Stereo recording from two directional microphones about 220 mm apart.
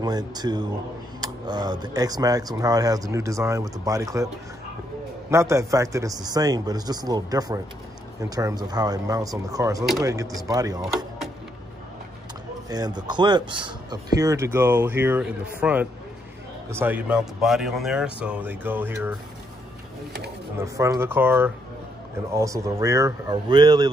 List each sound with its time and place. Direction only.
0.0 s a man's voice: 20° right (ahead or behind)
5.3 s a man's voice: 15° right (ahead or behind)
12.6 s a man's voice: 15° right (ahead or behind)
20.5 s a man's voice: 15° right (ahead or behind)